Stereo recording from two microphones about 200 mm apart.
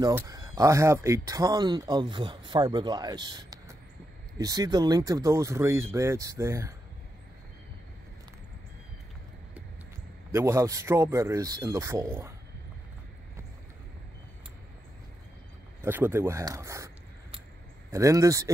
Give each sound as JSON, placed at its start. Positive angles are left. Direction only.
{"t": 0.0, "sound": "speech", "side_deg": -20}
{"t": 10.3, "sound": "speech", "side_deg": -15}
{"t": 15.8, "sound": "speech", "side_deg": -10}
{"t": 17.9, "sound": "speech", "side_deg": -15}